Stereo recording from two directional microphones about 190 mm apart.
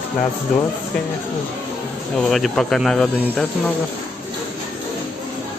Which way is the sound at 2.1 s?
Centre (ahead or behind).